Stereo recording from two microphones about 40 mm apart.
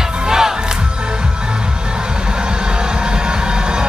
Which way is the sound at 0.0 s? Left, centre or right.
Centre.